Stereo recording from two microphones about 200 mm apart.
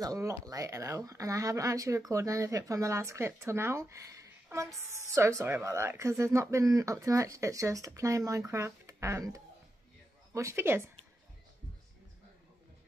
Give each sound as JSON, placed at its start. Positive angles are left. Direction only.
{"t": 0.0, "sound": "speech", "side_deg": -15}